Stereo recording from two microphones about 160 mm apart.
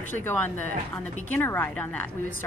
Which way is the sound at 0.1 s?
10° left (ahead or behind).